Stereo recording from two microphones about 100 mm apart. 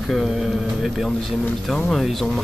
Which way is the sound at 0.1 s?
Centre (ahead or behind).